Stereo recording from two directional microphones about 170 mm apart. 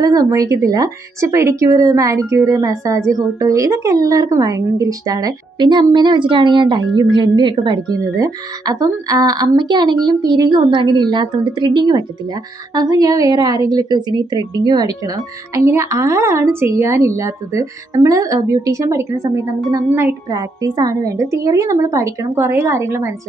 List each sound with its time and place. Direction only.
0.0 s a woman's voice: 20° right (ahead or behind)